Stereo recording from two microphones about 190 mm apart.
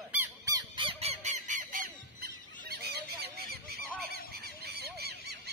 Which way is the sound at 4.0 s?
55° right (ahead or behind).